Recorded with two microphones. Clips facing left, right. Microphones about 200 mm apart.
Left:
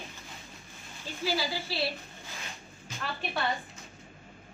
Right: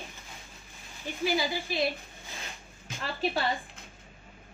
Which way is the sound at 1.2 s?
20° right (ahead or behind).